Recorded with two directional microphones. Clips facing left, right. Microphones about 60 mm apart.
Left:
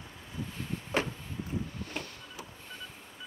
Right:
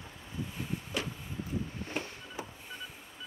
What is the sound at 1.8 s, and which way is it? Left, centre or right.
Vehicle, right.